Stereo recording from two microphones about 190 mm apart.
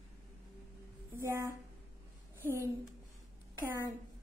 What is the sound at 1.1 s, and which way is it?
Speech, 15° right (ahead or behind).